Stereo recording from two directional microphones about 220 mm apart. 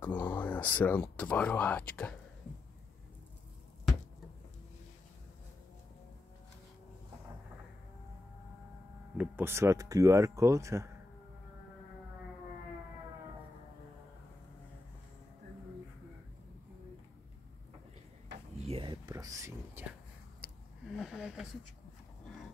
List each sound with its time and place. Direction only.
0.0 s speech: 10° left (ahead or behind)
9.1 s speech: 10° right (ahead or behind)
18.6 s a sound: 25° right (ahead or behind)
20.9 s speech: centre (ahead or behind)